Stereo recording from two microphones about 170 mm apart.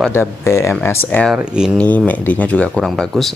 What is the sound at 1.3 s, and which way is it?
Speech, 5° right (ahead or behind).